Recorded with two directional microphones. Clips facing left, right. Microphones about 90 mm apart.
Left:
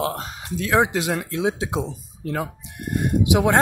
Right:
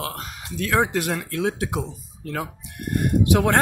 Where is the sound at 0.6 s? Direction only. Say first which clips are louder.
Left 2 dB; 15° left (ahead or behind).